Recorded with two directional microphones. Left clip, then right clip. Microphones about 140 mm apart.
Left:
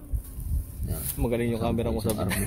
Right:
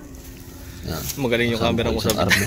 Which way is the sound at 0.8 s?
Centre (ahead or behind).